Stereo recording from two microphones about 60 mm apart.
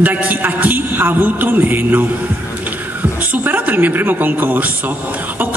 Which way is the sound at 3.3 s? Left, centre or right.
Right.